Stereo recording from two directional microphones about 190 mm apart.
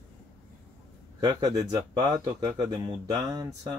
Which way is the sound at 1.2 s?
20° right (ahead or behind).